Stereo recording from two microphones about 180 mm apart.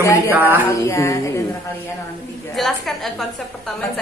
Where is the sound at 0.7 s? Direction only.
15° left (ahead or behind).